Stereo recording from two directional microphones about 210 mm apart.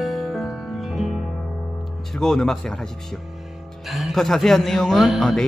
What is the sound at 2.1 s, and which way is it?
A man's voice, centre (ahead or behind).